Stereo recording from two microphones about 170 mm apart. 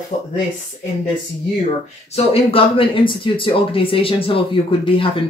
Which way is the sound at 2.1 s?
35° left (ahead or behind).